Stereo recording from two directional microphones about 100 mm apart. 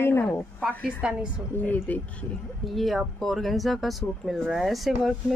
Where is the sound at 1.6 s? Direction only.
15° left (ahead or behind).